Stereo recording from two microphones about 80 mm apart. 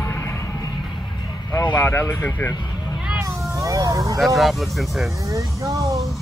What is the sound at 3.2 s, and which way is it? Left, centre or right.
Cat, right.